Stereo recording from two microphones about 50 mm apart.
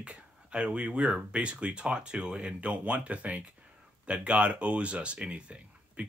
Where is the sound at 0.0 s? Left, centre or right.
Right.